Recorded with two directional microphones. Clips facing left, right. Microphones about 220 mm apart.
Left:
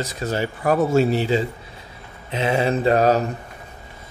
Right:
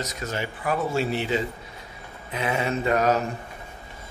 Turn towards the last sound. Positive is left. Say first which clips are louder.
# left 5 dB
turn(degrees=30)  # may be behind; listen again after turning